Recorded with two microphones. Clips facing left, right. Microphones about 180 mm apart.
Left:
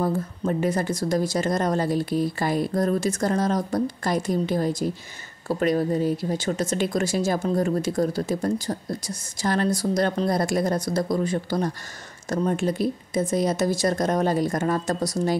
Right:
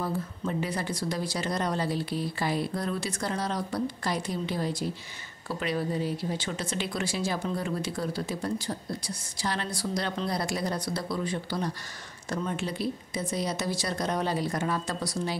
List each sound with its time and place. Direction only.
0.0 s speech: 45° left (ahead or behind)